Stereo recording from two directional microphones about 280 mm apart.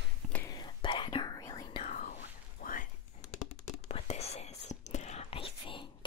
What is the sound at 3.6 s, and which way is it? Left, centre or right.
Whispering, left.